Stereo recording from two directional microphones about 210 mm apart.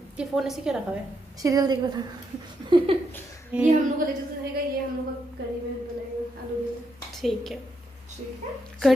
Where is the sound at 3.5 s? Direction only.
5° right (ahead or behind).